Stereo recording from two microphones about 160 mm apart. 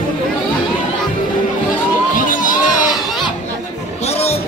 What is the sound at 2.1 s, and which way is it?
Music, 55° left (ahead or behind).